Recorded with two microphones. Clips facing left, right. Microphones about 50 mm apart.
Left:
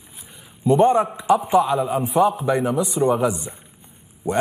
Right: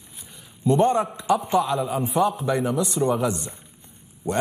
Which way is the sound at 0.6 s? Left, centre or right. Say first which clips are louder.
Left 4 dB; centre.